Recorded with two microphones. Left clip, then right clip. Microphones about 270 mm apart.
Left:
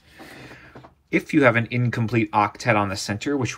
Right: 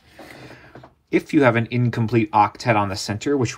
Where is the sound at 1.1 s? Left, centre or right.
Centre.